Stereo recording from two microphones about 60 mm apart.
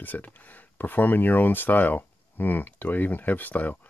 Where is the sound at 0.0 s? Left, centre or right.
Left.